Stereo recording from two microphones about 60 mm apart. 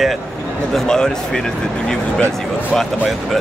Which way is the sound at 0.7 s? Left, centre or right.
Centre.